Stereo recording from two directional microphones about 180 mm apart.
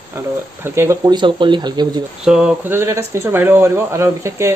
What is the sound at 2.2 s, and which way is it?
Speech, 5° right (ahead or behind).